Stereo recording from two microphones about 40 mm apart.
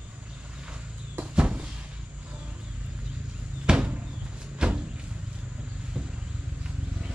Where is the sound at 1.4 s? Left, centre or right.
Right.